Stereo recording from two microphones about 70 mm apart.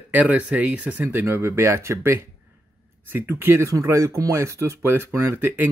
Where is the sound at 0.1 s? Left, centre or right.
Right.